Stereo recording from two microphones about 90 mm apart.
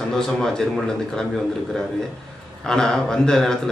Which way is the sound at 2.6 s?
5° left (ahead or behind).